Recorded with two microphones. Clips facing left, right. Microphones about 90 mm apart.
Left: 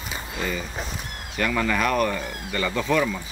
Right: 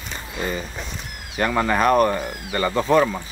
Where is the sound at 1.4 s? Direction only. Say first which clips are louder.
Right 4 dB; 35° right (ahead or behind).